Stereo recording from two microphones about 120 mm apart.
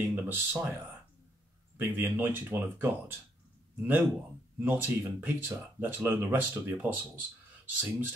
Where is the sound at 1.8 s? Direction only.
15° right (ahead or behind).